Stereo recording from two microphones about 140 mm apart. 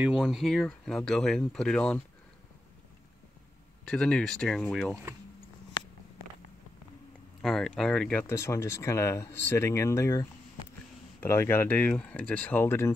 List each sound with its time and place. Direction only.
0.0 s speech: 5° right (ahead or behind)
3.8 s speech: 5° left (ahead or behind)
7.4 s speech: 5° left (ahead or behind)